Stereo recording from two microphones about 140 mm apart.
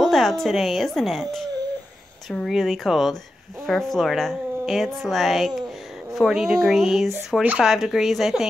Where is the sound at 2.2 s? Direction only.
Centre (ahead or behind).